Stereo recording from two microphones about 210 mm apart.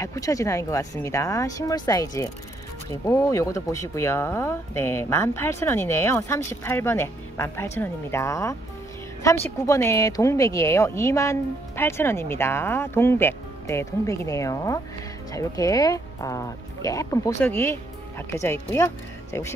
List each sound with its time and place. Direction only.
0.0 s speech: 15° left (ahead or behind)